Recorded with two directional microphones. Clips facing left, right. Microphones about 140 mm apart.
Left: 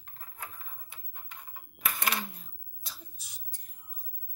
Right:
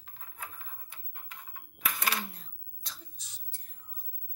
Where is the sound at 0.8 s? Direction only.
5° left (ahead or behind).